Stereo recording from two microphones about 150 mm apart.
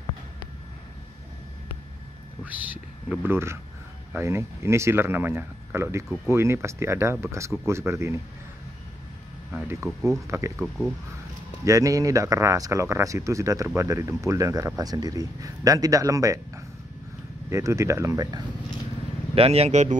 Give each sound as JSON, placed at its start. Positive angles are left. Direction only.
{"t": 2.4, "sound": "speech", "side_deg": -10}
{"t": 10.2, "sound": "speech", "side_deg": -20}
{"t": 11.6, "sound": "speech", "side_deg": -20}
{"t": 19.3, "sound": "speech", "side_deg": -40}